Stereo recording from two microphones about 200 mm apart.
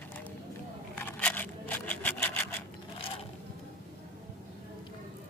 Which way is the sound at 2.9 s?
30° left (ahead or behind).